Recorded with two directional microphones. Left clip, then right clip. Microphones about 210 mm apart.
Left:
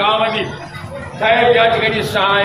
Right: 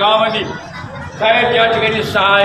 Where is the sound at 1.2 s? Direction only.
5° right (ahead or behind).